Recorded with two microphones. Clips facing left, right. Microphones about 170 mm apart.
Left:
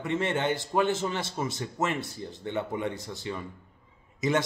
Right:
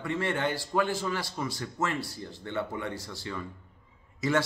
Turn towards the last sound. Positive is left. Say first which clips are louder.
# left 1 dB
turn(degrees=20)  # may be behind; listen again after turning